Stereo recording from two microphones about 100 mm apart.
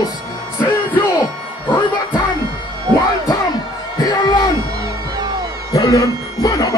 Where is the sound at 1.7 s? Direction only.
45° left (ahead or behind).